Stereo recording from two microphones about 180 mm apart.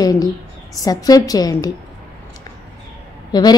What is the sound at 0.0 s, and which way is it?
A woman's voice, 20° left (ahead or behind).